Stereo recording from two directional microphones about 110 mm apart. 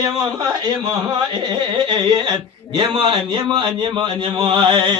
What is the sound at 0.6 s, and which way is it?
Speech, 45° right (ahead or behind).